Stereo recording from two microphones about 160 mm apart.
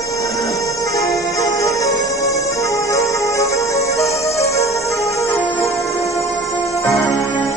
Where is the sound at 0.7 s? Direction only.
20° left (ahead or behind).